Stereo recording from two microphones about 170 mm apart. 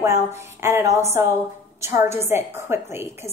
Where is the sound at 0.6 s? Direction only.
15° right (ahead or behind).